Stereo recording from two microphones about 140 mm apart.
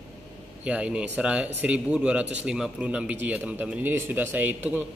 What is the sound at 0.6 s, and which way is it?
Speech, 5° right (ahead or behind).